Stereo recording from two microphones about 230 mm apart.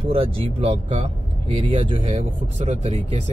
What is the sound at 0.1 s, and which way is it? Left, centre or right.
Speech, right.